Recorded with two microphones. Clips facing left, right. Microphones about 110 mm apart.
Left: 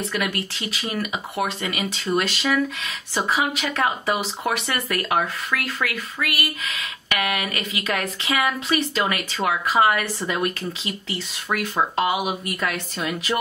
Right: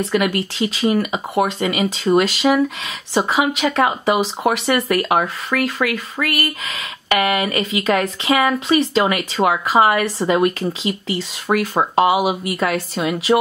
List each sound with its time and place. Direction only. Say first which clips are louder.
0.0 s speech: right 7 dB; 30° right (ahead or behind)
3.2 s speech: right 6 dB; 30° right (ahead or behind)
6.2 s a sound: right 5 dB; 50° right (ahead or behind)
7.1 s speech: right 8 dB; 35° right (ahead or behind)